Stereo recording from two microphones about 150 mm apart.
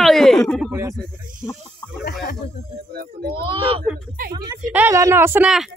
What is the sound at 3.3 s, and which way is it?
Speech, 35° right (ahead or behind).